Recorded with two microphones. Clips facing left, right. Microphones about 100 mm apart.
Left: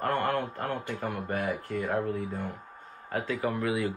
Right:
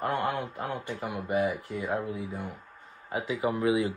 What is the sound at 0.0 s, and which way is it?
Speech, 15° right (ahead or behind).